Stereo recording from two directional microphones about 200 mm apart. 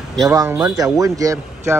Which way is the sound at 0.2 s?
15° right (ahead or behind).